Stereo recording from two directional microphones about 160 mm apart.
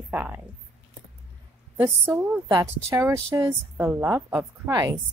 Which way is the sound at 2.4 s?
20° right (ahead or behind).